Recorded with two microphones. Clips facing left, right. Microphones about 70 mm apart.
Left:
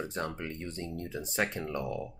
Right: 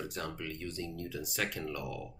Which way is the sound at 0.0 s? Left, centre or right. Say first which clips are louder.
Left 4 dB; left.